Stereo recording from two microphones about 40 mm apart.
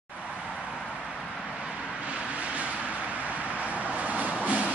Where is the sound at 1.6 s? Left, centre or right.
Right.